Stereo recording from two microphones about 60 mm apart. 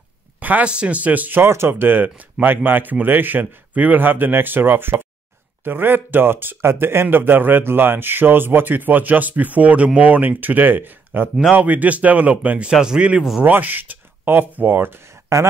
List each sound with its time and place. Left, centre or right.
0.4 s a sound: right
0.7 s speech: centre
1.4 s speech: right; by 13.3 s centre
13.4 s speech: right
15.3 s speech: right